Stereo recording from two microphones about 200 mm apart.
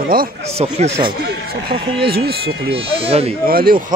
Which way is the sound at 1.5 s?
50° right (ahead or behind).